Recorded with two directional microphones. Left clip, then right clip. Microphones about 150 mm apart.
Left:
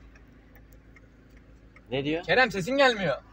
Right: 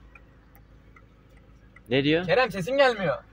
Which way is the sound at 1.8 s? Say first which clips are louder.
Right 6 dB; 55° right (ahead or behind).